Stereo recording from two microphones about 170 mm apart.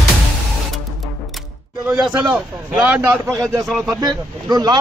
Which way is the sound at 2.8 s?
10° right (ahead or behind).